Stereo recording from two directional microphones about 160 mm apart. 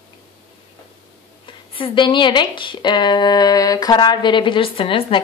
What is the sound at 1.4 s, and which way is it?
Speech, 30° left (ahead or behind).